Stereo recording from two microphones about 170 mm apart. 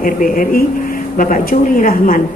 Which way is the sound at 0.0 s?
55° left (ahead or behind).